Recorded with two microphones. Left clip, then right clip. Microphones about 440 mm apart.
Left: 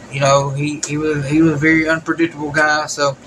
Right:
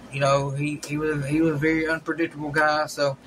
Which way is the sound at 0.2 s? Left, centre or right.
Right.